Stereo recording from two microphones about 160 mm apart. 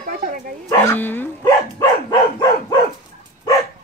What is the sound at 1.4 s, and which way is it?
Dog, 25° left (ahead or behind).